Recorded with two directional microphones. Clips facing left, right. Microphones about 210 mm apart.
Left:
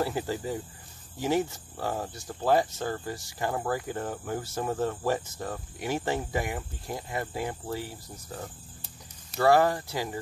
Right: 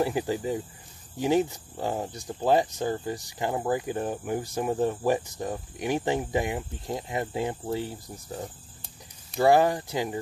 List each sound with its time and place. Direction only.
0.0 s speech: 15° right (ahead or behind)